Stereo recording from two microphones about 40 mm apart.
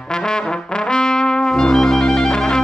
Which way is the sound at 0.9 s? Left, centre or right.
Centre.